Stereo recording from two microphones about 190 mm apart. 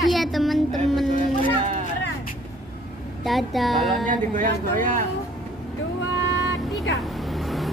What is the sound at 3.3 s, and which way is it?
Speech, centre (ahead or behind).